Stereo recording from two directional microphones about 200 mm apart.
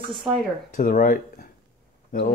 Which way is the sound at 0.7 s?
45° left (ahead or behind).